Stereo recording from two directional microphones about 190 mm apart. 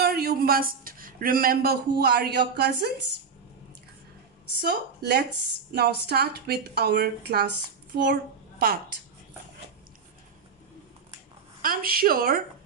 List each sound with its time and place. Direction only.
0.0 s speech: 55° right (ahead or behind)
4.6 s a woman's voice: 60° right (ahead or behind)
11.6 s speech: 50° right (ahead or behind)